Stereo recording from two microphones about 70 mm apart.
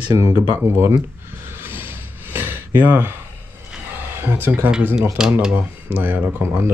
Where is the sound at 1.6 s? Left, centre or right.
Right.